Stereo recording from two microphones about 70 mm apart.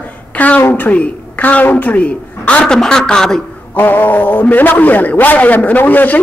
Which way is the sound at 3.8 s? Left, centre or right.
Left.